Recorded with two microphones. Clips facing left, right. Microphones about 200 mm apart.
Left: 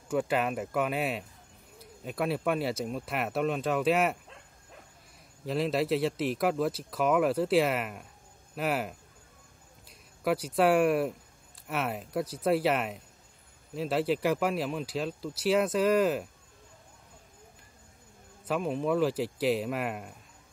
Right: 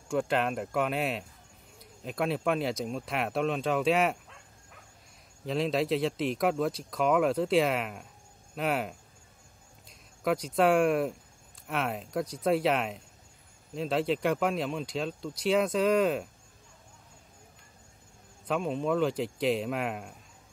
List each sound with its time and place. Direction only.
0.1 s speech: 5° left (ahead or behind)
5.4 s speech: centre (ahead or behind)
18.5 s speech: 5° left (ahead or behind)